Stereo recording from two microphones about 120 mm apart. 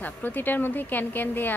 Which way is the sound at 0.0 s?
15° left (ahead or behind).